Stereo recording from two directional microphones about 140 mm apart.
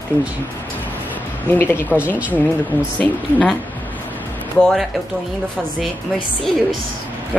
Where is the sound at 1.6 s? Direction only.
15° left (ahead or behind).